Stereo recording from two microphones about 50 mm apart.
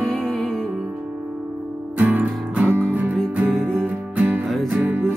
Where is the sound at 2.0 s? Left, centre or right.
Right.